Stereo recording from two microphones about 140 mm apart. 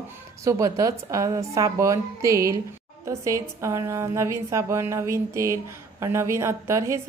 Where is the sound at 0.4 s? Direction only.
25° right (ahead or behind).